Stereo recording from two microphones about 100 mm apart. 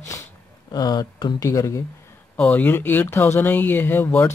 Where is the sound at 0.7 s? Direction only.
40° left (ahead or behind).